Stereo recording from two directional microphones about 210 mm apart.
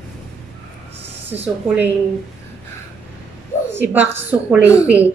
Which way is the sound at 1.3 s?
10° right (ahead or behind).